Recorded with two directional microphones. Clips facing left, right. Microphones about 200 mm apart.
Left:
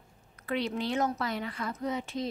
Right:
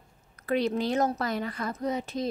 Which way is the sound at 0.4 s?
40° right (ahead or behind).